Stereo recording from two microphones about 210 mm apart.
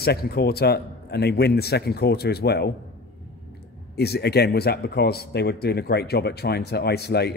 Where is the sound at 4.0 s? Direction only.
50° left (ahead or behind).